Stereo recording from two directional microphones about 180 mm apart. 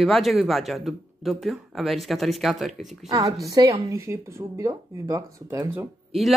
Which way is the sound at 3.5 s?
20° right (ahead or behind).